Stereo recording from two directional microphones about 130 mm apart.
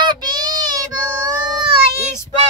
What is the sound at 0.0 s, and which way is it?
Child singing, 35° right (ahead or behind).